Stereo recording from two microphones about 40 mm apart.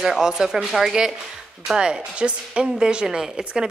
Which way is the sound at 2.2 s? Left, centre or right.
Right.